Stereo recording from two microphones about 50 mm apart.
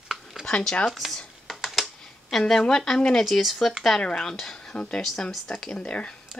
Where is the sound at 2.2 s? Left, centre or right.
Centre.